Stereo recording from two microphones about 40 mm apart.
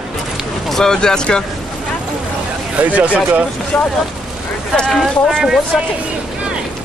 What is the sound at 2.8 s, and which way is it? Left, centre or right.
Speech, right.